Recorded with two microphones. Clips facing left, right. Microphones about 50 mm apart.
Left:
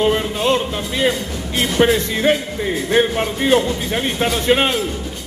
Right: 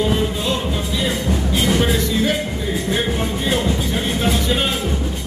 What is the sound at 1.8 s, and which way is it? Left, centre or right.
Speech, left.